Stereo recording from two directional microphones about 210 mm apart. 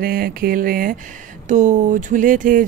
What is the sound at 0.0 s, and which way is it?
Speech, 45° right (ahead or behind).